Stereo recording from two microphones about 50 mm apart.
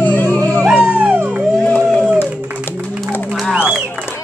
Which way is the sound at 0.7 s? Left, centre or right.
Right.